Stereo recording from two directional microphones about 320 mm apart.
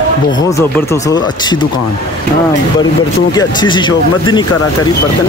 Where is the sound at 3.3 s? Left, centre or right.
Centre.